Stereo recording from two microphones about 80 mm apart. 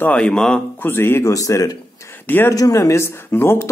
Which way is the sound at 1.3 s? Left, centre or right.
Left.